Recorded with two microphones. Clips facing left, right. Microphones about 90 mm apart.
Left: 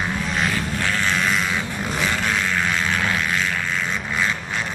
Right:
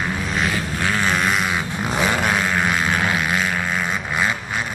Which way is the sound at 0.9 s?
15° right (ahead or behind).